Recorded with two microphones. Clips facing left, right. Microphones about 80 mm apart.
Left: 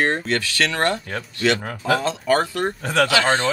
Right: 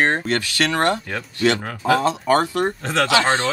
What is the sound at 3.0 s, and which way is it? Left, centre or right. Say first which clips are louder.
Speech: right 1 dB; right.